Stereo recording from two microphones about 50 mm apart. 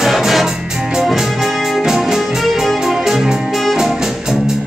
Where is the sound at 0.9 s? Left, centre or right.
Centre.